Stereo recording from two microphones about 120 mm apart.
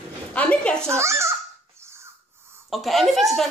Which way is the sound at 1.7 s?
20° right (ahead or behind).